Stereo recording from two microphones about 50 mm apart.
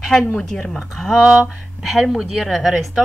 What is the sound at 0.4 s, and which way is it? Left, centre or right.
Speech, centre.